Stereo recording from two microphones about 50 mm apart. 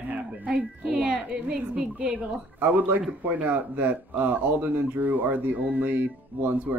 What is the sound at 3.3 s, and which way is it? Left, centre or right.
Speech, right.